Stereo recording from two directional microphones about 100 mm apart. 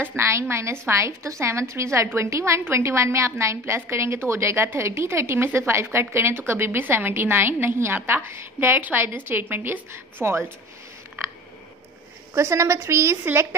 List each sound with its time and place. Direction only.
0.0 s a woman's voice: 25° right (ahead or behind)
12.4 s a woman's voice: 30° right (ahead or behind)